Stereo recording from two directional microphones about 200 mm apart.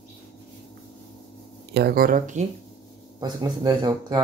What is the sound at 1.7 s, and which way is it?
Speech, 55° right (ahead or behind).